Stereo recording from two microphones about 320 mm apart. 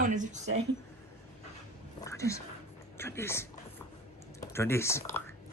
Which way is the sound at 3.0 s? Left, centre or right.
Centre.